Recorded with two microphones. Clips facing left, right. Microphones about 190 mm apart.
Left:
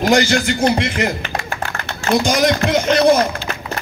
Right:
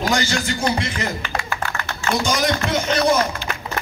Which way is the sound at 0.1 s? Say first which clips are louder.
Left 7 dB; 65° left (ahead or behind).